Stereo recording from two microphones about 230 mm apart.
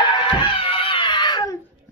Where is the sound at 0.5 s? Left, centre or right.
Left.